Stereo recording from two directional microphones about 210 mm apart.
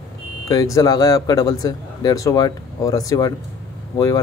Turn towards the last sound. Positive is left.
turn(degrees=20)  # may be behind; listen again after turning